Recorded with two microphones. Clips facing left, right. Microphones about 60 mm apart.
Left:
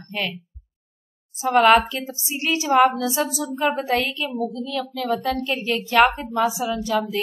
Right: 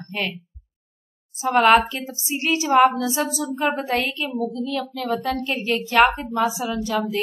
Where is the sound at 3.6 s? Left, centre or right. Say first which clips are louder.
Left 2 dB; centre.